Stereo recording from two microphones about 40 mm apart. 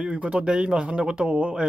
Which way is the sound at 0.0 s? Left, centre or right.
Right.